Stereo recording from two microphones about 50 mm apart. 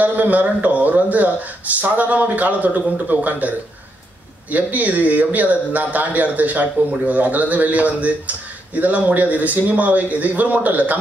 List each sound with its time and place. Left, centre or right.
0.0 s a man's voice: right